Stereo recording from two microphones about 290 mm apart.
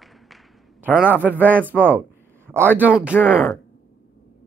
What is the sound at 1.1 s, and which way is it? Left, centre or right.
Speech, centre.